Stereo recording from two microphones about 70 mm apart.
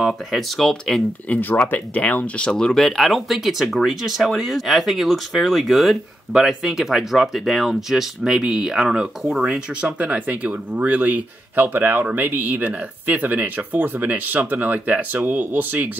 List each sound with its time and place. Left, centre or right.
0.0 s speech: centre
1.3 s speech: left; by 9.8 s centre
9.8 s speech: right